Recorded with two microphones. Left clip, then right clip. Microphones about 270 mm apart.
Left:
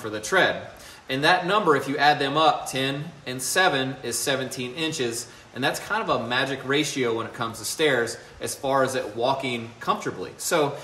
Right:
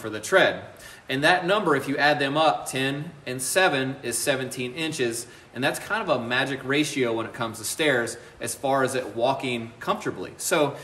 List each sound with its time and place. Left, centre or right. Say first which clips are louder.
0.1 s speech: right 1 dB; centre